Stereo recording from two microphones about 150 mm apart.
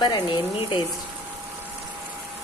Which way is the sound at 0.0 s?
35° left (ahead or behind).